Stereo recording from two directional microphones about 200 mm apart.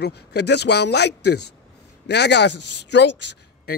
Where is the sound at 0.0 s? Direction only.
55° left (ahead or behind).